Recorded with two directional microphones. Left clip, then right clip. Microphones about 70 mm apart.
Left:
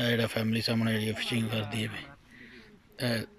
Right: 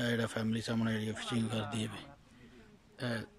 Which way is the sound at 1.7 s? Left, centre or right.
Right.